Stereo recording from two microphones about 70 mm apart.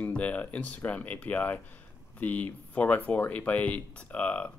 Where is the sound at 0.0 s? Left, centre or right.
Left.